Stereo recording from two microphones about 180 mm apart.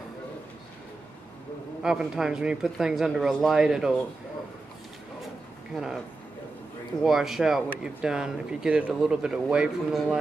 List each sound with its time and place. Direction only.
1.8 s speech: 5° right (ahead or behind)
5.7 s speech: centre (ahead or behind)
7.0 s speech: centre (ahead or behind)